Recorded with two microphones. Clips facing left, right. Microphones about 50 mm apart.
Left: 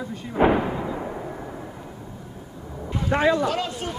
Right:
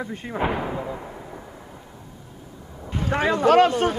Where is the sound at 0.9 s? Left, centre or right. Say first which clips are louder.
Left 5 dB; centre.